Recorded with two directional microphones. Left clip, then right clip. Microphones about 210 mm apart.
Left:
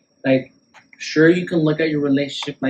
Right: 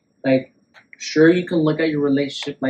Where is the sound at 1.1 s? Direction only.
20° right (ahead or behind).